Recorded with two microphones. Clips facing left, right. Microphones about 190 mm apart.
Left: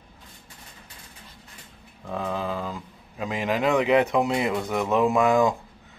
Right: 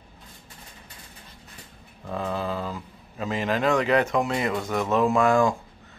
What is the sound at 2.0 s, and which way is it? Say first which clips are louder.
Mantra: even; centre (ahead or behind).